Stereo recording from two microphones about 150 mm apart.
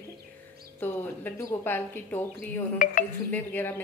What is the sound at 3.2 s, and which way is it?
Speech, 10° left (ahead or behind).